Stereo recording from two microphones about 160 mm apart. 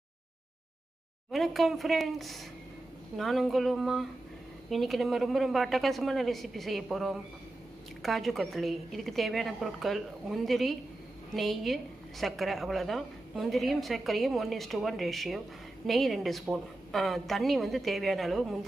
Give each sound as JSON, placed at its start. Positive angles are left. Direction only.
{"t": 1.3, "sound": "a woman's voice", "side_deg": 0}